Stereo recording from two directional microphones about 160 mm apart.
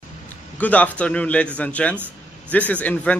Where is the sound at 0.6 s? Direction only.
10° left (ahead or behind).